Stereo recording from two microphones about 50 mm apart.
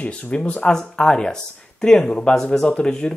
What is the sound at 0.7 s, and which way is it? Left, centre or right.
Speech, centre.